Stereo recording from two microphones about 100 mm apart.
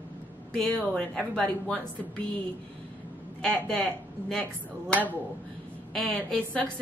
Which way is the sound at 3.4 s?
10° left (ahead or behind).